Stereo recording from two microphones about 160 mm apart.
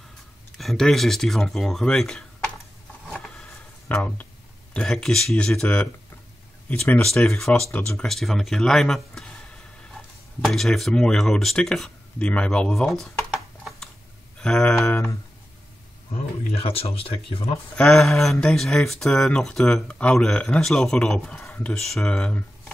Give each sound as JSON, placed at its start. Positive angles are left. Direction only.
{"t": 0.6, "sound": "speech", "side_deg": 0}
{"t": 3.9, "sound": "speech", "side_deg": 10}
{"t": 10.4, "sound": "speech", "side_deg": 0}
{"t": 16.1, "sound": "speech", "side_deg": 40}
{"t": 17.7, "sound": "speech", "side_deg": 5}